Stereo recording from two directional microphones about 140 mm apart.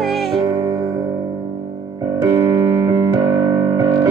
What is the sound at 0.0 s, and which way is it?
Music, centre (ahead or behind).